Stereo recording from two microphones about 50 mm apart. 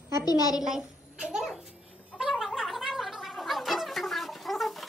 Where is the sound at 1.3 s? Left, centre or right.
Centre.